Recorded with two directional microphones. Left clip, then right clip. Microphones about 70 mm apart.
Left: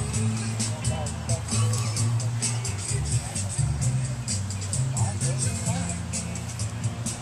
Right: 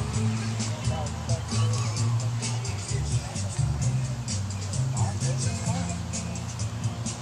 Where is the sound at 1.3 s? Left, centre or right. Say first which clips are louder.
Left 3 dB; left.